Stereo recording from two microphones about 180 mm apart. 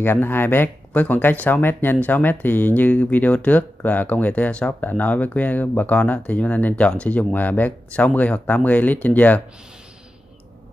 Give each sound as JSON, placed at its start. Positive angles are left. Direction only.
{"t": 0.0, "sound": "speech", "side_deg": 10}